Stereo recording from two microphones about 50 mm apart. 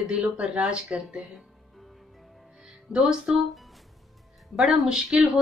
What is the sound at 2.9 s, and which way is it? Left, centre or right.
Speech, centre.